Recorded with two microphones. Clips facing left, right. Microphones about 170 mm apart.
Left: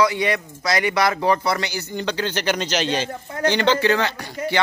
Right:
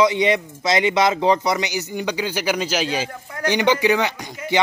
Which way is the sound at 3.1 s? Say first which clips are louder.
Left 4 dB; 25° left (ahead or behind).